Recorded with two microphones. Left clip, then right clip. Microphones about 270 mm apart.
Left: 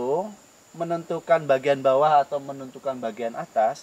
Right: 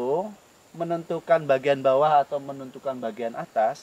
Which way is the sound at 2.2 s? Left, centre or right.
Right.